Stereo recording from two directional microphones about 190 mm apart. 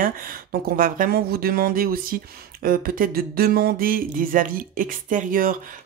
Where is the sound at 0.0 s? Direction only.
50° right (ahead or behind).